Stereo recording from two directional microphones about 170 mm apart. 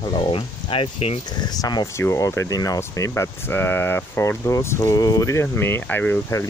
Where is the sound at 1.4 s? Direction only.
25° left (ahead or behind).